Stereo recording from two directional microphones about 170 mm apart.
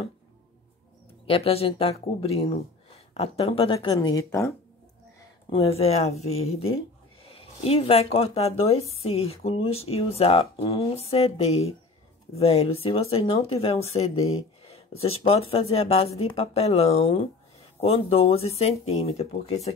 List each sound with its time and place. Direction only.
1.2 s speech: 35° left (ahead or behind); by 4.6 s 20° left (ahead or behind)
5.5 s speech: 35° left (ahead or behind)